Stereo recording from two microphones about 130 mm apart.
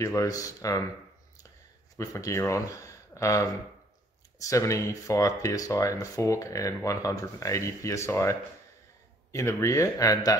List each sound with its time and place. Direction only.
0.0 s speech: 25° left (ahead or behind)
2.0 s speech: 25° left (ahead or behind)